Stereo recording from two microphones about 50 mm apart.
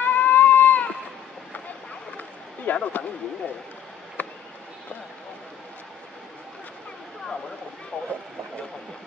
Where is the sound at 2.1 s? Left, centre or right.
Left.